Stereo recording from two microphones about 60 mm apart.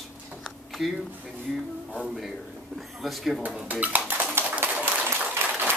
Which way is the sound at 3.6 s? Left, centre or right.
Right.